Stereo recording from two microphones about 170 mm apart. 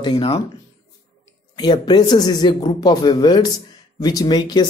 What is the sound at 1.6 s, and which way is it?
A man's voice, 25° left (ahead or behind).